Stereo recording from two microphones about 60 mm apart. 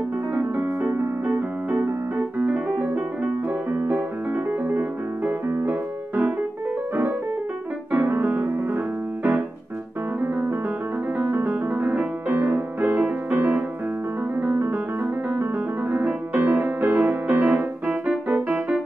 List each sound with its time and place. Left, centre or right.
0.3 s piano: right
3.7 s music: right
7.9 s music: right
11.1 s music: right
14.4 s piano: right
15.9 s music: right